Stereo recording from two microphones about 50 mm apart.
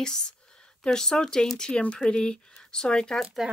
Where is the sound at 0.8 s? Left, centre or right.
Centre.